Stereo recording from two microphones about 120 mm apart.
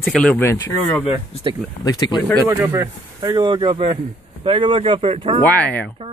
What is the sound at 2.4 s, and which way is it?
Speech, 15° right (ahead or behind).